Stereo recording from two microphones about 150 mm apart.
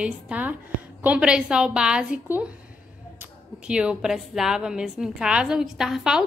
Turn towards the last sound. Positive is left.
turn(degrees=-5)  # may be behind; listen again after turning